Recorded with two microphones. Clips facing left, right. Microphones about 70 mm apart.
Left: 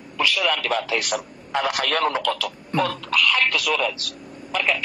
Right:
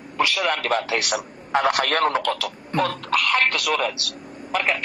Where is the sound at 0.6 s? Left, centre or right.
Right.